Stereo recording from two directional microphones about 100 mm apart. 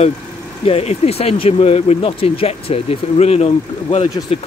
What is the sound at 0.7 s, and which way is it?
Speech, 85° left.